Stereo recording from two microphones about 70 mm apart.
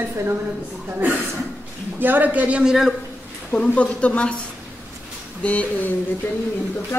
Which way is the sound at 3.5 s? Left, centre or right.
Left.